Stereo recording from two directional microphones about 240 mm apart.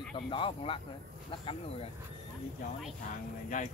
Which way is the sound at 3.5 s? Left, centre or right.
Left.